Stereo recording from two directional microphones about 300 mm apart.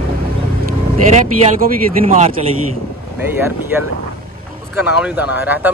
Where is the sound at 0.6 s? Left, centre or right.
Right.